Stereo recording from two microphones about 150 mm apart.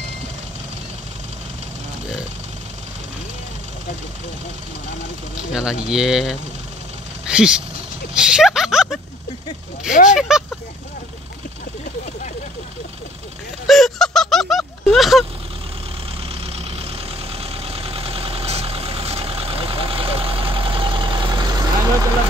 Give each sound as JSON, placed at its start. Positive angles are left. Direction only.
{"t": 5.5, "sound": "speech", "side_deg": -5}
{"t": 10.1, "sound": "speech", "side_deg": -5}
{"t": 13.7, "sound": "a sound", "side_deg": 0}
{"t": 17.4, "sound": "vehicle", "side_deg": -40}